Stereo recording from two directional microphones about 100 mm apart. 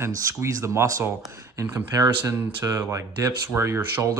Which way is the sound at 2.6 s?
30° right (ahead or behind).